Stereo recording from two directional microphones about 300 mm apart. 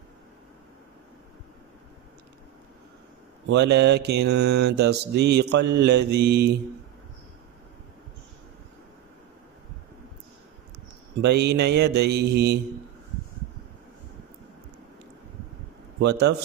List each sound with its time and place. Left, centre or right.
3.4 s mantra: right
11.1 s mantra: right
16.0 s mantra: right